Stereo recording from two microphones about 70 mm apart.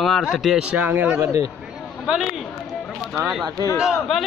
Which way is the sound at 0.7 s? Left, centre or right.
Right.